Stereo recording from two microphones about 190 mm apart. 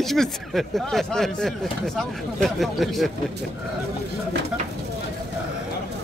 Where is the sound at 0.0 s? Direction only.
Centre (ahead or behind).